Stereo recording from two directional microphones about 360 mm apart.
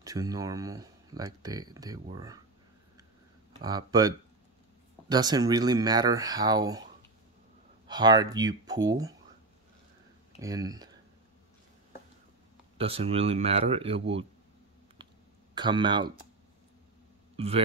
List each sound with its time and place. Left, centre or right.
0.0 s speech: centre
3.6 s speech: centre
7.8 s speech: centre
10.4 s speech: centre
12.7 s speech: centre
15.5 s speech: centre